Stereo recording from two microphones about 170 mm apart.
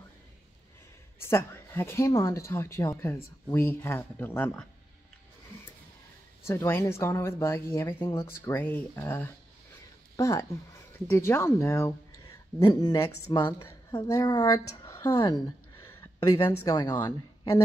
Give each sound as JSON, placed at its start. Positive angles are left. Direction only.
{"t": 1.2, "sound": "speech", "side_deg": 15}
{"t": 6.4, "sound": "a woman's voice", "side_deg": 15}